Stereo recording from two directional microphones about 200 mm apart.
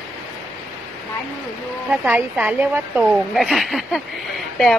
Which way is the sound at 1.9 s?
10° right (ahead or behind).